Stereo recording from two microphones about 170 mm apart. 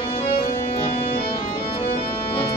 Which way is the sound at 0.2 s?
30° left (ahead or behind).